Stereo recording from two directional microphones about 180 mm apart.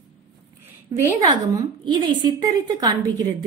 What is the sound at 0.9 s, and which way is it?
Speech, 20° right (ahead or behind).